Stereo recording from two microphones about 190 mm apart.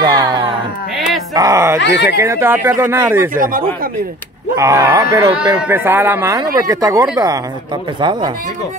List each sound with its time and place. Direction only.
0.0 s a sound: 20° right (ahead or behind)
0.9 s a sound: centre (ahead or behind)
1.3 s speech: 15° right (ahead or behind)
1.8 s speech: 65° left (ahead or behind)
2.0 s speech: 15° right (ahead or behind)
3.3 s speech: 45° right (ahead or behind)
4.6 s speech: 15° right (ahead or behind)